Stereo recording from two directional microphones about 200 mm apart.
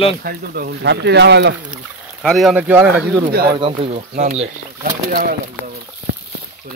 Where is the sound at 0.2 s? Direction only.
45° right (ahead or behind).